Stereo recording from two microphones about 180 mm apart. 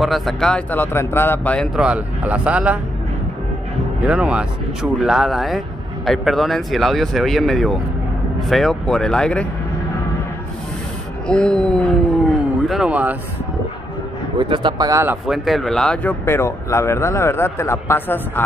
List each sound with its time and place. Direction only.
0.0 s speech: centre (ahead or behind)
1.8 s speech: 5° right (ahead or behind)
4.0 s speech: 5° right (ahead or behind)
11.2 s speech: 5° left (ahead or behind)
14.4 s speech: 25° right (ahead or behind)
15.2 s speech: centre (ahead or behind)